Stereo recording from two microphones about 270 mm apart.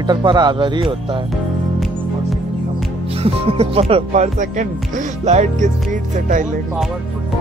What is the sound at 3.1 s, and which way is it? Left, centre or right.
Speech, right.